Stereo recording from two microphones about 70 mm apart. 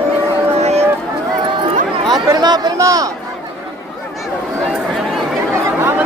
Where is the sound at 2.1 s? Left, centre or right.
Right.